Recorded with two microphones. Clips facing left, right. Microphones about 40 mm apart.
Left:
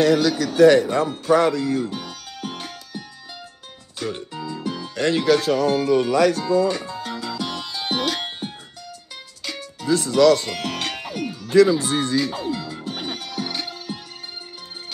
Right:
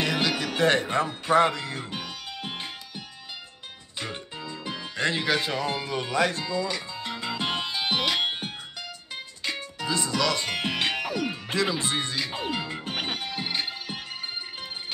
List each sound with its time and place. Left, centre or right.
0.0 s speech: right
2.0 s music: right
4.0 s music: right
4.5 s speech: right
6.6 s speech: left
7.0 s music: right
7.8 s music: centre
9.8 s speech: right
11.6 s speech: right
12.2 s music: right
12.4 s music: right
13.1 s music: right